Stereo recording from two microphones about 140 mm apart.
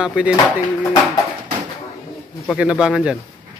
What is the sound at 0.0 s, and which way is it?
Speech, 10° right (ahead or behind).